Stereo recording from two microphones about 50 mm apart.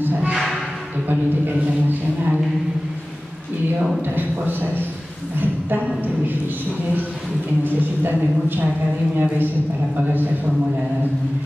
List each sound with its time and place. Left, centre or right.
0.0 s speech: right
4.1 s a man's voice: right
7.6 s speech: right